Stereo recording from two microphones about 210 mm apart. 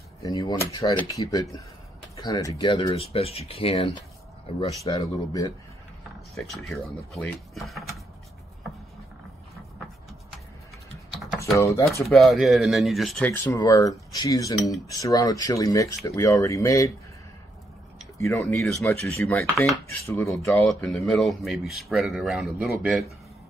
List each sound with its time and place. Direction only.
0.2 s speech: 15° left (ahead or behind)
4.9 s speech: 15° left (ahead or behind)
6.3 s dishes: centre (ahead or behind)
11.5 s speech: 15° left (ahead or behind)
12.1 s dishes: centre (ahead or behind); by 14.5 s 15° left (ahead or behind)
14.9 s speech: 15° left (ahead or behind)
18.1 s speech: 15° left (ahead or behind)
19.5 s dishes: 5° left (ahead or behind)